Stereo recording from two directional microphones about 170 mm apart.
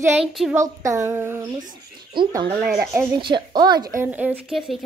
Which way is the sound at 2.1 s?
30° right (ahead or behind).